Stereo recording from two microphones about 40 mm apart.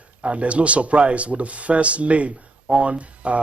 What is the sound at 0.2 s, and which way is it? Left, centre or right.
Speech, right.